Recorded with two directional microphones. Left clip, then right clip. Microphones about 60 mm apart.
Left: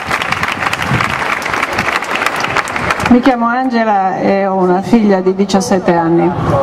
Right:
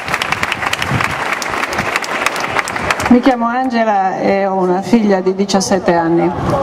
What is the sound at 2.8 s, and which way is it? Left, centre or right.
Speech, centre.